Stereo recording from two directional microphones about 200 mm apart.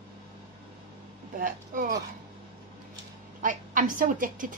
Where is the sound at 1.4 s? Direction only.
45° right (ahead or behind).